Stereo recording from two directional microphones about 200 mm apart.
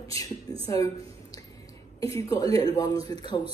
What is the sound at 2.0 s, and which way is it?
A woman's voice, 15° left (ahead or behind).